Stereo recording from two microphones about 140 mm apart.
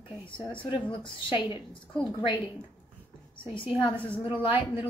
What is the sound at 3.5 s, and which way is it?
A woman's voice, 40° left (ahead or behind).